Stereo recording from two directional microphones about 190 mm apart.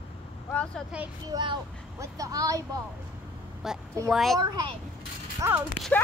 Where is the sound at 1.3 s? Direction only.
25° right (ahead or behind).